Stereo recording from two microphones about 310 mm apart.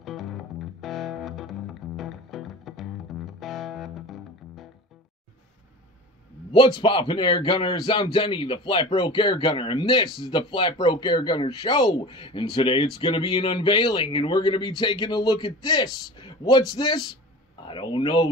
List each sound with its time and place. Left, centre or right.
0.0 s music: centre
6.6 s a man's voice: centre